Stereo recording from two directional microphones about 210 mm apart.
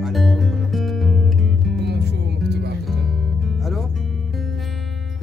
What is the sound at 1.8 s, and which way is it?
Music, 55° right (ahead or behind).